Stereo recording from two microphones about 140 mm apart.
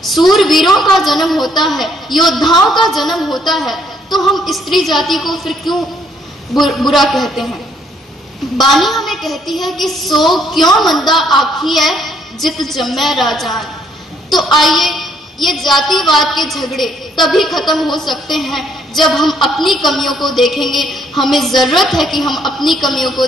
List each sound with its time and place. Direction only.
0.0 s a woman's voice: centre (ahead or behind)
8.7 s a woman's voice: centre (ahead or behind)